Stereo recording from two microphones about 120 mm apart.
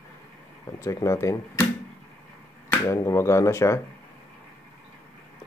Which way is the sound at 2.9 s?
25° left (ahead or behind).